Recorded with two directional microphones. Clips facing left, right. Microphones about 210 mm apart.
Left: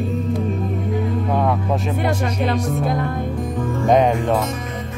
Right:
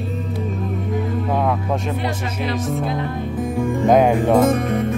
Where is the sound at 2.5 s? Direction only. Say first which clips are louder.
Left 1 dB; centre (ahead or behind).